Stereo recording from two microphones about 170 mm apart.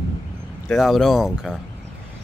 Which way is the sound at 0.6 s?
Centre (ahead or behind).